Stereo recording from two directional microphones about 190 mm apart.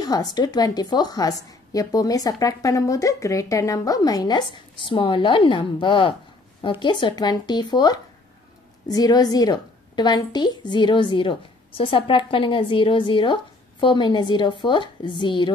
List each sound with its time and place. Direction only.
0.0 s a woman's voice: 20° left (ahead or behind)